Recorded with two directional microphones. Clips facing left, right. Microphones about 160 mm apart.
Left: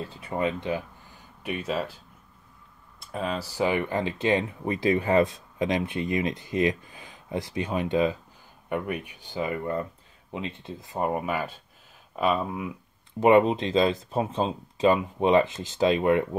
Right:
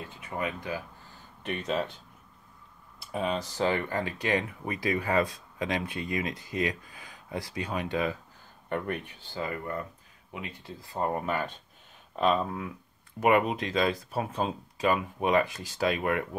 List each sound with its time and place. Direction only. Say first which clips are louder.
0.0 s speech: left 6 dB; 35° left (ahead or behind)
1.4 s speech: left 1 dB; 10° left (ahead or behind)
3.0 s speech: even; centre (ahead or behind); by 8.2 s 20° left (ahead or behind)
8.6 s speech: left 2 dB; 10° left (ahead or behind)
13.2 s speech: left 5 dB; 25° left (ahead or behind)